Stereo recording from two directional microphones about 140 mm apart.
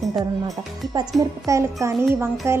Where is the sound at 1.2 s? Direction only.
25° right (ahead or behind).